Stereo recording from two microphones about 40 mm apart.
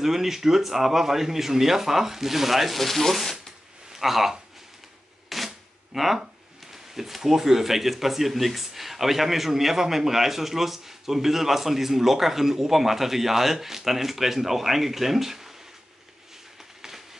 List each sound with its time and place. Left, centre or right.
0.0 s speech: centre
3.9 s speech: centre
5.3 s a sound: centre
5.9 s speech: centre